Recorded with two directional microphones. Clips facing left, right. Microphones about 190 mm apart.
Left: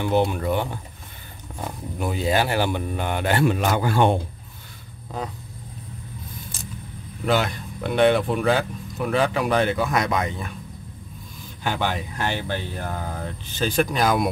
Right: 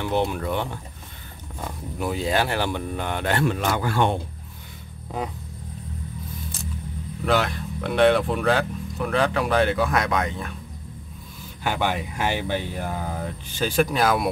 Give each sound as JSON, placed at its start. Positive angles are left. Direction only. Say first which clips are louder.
{"t": 0.0, "sound": "speech", "louder": "left 3 dB", "side_deg": 0}
{"t": 2.0, "sound": "speech", "louder": "left 1 dB", "side_deg": 0}
{"t": 7.2, "sound": "speech", "louder": "even", "side_deg": 0}
{"t": 11.6, "sound": "speech", "louder": "right 1 dB", "side_deg": -10}